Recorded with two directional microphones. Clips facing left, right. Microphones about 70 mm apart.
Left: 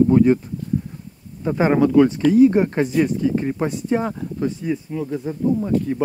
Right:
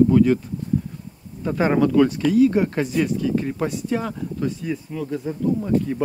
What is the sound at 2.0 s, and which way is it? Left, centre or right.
Speech, left.